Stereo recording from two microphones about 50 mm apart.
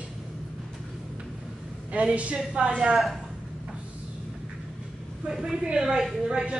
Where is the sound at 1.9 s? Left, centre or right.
Right.